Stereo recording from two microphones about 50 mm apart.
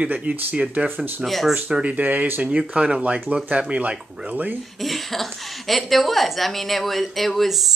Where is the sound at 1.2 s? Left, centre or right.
Centre.